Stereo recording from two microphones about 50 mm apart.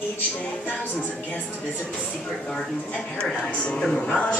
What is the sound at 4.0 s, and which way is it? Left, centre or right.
Speech, left.